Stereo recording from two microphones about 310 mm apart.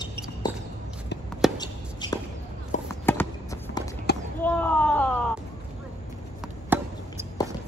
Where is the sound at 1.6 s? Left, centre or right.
Centre.